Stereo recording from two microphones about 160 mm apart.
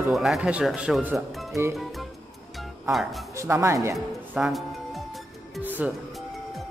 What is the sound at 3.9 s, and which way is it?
Music, centre (ahead or behind).